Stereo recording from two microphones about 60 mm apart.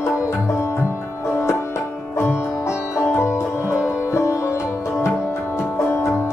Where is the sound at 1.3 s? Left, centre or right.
Left.